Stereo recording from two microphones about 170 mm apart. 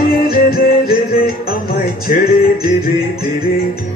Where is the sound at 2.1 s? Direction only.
50° left (ahead or behind).